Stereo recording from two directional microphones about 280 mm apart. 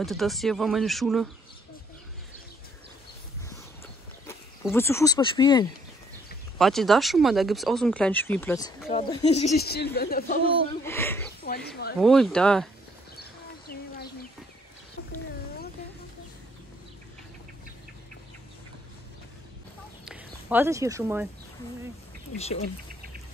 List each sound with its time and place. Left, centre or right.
0.0 s speech: centre
4.3 s speech: centre
6.6 s speech: centre; by 9.6 s left
9.6 s a woman's voice: left
10.7 s speech: centre
11.4 s a woman's voice: left
12.0 s speech: centre
13.1 s a sound: left
20.1 s speech: centre
22.3 s speech: left